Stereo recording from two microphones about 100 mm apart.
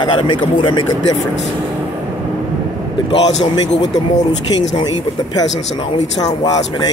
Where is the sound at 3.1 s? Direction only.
45° left (ahead or behind).